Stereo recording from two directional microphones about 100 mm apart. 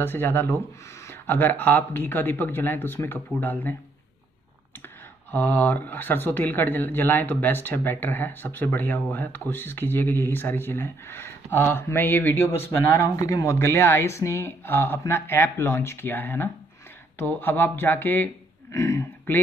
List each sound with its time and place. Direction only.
0.0 s speech: 20° left (ahead or behind)
5.3 s speech: 20° left (ahead or behind)